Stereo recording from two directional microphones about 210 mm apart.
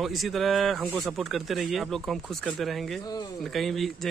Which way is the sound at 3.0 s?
20° left (ahead or behind).